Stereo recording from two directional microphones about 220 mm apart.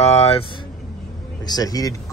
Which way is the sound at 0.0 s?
30° left (ahead or behind).